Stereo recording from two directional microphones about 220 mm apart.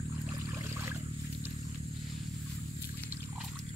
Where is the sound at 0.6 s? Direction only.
10° right (ahead or behind).